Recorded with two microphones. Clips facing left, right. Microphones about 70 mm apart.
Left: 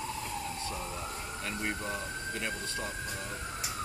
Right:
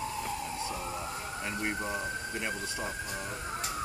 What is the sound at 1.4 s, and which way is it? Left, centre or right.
Speech, centre.